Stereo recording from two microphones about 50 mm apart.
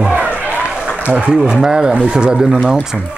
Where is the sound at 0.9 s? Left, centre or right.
Right.